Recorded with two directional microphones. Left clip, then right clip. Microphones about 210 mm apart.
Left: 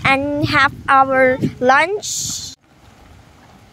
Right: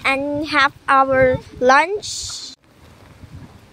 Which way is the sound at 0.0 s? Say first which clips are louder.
Left 3 dB; 20° left (ahead or behind).